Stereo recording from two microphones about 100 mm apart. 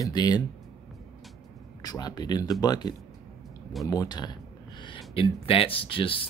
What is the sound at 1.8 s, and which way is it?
Speech, 40° left (ahead or behind).